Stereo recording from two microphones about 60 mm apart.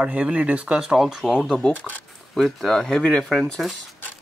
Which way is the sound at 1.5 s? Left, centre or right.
Left.